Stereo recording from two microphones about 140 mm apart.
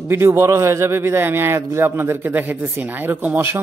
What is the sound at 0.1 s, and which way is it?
A man's voice, 15° right (ahead or behind).